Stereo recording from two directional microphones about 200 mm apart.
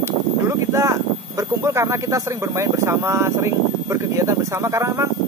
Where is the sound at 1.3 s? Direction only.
15° right (ahead or behind).